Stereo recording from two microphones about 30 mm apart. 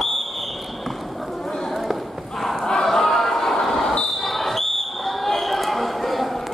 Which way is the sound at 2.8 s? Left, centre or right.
Centre.